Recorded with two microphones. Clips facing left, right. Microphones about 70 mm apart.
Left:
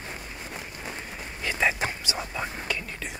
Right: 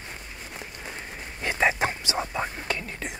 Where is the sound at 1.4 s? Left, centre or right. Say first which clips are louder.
Right 2 dB; right.